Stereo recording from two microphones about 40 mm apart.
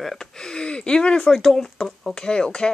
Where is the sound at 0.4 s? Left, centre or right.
Left.